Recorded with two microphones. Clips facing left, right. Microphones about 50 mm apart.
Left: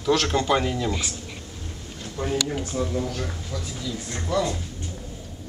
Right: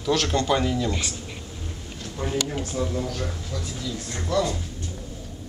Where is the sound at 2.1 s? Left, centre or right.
Centre.